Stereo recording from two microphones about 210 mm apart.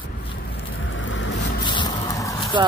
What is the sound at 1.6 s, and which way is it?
Vehicle, 20° left (ahead or behind).